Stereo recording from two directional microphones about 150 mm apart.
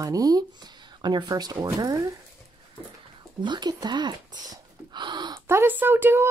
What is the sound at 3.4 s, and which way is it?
Speech, 30° right (ahead or behind).